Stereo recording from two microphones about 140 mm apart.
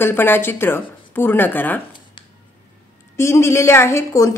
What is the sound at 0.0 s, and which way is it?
Speech, 15° left (ahead or behind).